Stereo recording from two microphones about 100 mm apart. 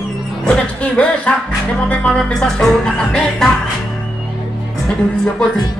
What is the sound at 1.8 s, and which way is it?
Music, 15° left (ahead or behind).